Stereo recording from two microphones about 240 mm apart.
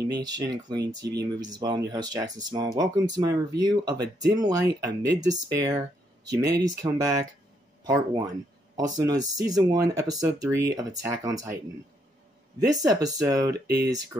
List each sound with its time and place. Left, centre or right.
0.2 s speech: centre
0.7 s speech: right
1.4 s speech: centre
12.7 s speech: centre